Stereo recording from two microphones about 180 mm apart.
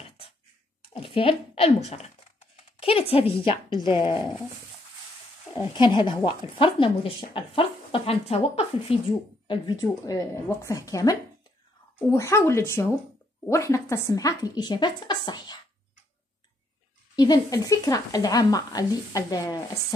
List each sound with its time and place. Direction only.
0.8 s a woman's voice: 30° left (ahead or behind)
5.7 s speech: 25° left (ahead or behind)
9.5 s speech: 20° left (ahead or behind)
17.1 s speech: 20° left (ahead or behind)